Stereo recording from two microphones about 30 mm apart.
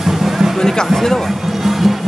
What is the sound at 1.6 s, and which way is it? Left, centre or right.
Music, centre.